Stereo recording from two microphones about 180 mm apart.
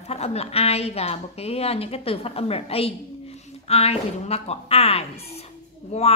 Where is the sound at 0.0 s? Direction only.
35° left (ahead or behind).